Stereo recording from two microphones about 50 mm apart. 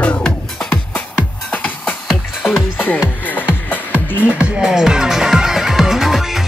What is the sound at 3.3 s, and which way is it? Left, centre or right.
Music, left.